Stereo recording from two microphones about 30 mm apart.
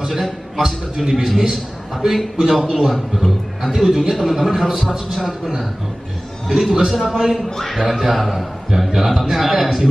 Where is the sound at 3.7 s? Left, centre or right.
Centre.